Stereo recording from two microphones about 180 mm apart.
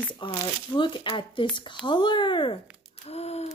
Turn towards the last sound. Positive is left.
turn(degrees=35)  # may be behind; listen again after turning